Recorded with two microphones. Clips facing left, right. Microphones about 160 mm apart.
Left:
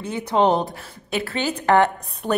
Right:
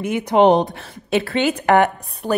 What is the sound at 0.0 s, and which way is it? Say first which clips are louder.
A woman's voice: right 5 dB; 15° right (ahead or behind).